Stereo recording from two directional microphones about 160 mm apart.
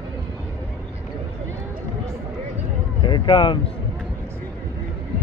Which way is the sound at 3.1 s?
30° left (ahead or behind).